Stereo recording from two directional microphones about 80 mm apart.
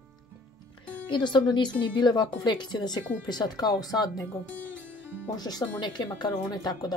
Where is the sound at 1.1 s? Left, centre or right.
Left.